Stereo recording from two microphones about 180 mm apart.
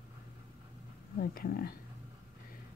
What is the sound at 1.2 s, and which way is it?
Speech, 55° left (ahead or behind).